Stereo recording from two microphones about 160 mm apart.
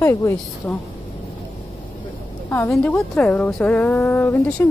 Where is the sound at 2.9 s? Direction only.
10° left (ahead or behind).